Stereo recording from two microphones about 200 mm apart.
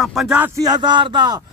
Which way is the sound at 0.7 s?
20° right (ahead or behind).